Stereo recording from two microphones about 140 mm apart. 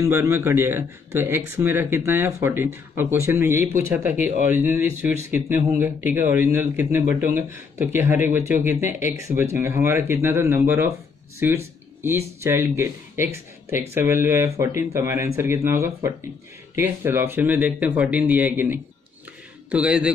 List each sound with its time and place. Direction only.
0.0 s speech: 20° right (ahead or behind)